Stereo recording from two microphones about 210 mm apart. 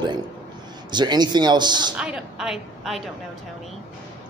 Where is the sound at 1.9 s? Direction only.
5° right (ahead or behind).